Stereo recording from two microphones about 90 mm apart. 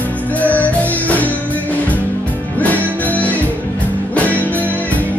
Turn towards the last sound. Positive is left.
turn(degrees=15)  # may be behind; listen again after turning